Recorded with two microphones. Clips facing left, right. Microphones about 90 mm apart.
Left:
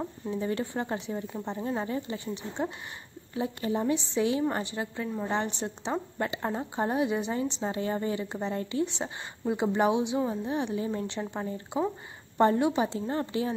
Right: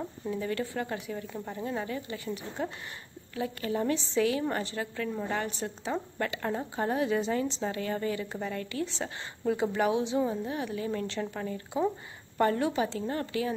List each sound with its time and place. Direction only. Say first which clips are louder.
0.3 s speech: left 1 dB; 25° left (ahead or behind)